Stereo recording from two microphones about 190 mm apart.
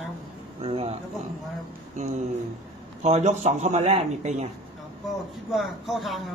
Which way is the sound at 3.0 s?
35° right (ahead or behind).